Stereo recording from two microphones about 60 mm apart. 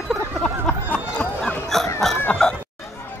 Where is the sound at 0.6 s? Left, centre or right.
Left.